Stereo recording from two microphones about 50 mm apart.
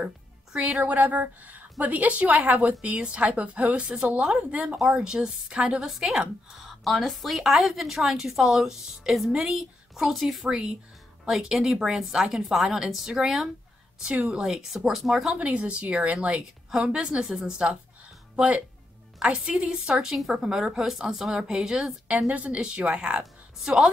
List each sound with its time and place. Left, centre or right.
0.5 s a woman's voice: centre
0.8 s a woman's voice: right
5.0 s a woman's voice: centre
10.5 s a woman's voice: centre
15.3 s a woman's voice: right
16.7 s a woman's voice: centre
18.3 s speech: right
19.1 s a woman's voice: centre
22.3 s a woman's voice: right
23.6 s a woman's voice: centre